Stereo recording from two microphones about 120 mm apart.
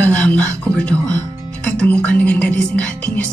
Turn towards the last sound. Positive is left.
turn(degrees=10)  # may be behind; listen again after turning